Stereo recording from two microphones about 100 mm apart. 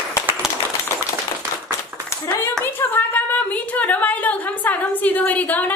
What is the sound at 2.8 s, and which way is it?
A woman's voice, 20° left (ahead or behind).